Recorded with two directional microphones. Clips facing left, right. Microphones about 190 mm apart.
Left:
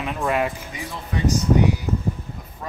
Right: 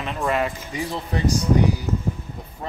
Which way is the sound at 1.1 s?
35° right (ahead or behind).